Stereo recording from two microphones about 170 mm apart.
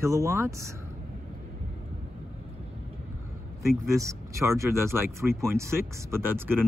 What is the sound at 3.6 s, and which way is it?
Speech, 20° right (ahead or behind).